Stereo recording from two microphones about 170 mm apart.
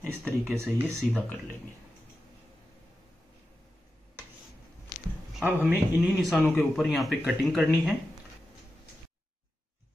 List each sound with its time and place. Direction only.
0.0 s speech: 15° right (ahead or behind)
5.4 s a man's voice: 10° right (ahead or behind)